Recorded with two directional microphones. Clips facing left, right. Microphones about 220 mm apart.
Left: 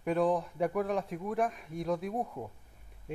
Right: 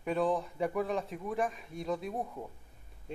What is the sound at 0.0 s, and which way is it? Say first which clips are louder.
Speech: left 2 dB; 5° left (ahead or behind).